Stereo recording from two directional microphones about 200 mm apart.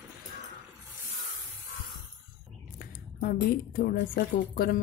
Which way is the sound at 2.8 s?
45° left (ahead or behind).